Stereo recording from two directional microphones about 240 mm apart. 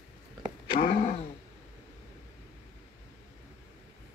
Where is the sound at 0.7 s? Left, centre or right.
Left.